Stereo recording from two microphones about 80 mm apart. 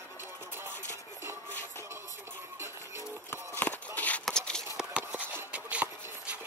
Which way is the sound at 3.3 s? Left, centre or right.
Left.